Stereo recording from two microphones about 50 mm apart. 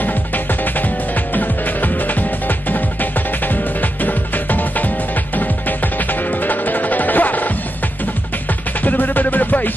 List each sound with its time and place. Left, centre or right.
0.0 s music: left
8.8 s music: left